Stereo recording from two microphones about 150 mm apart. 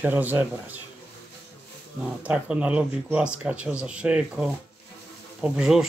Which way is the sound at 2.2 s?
10° right (ahead or behind).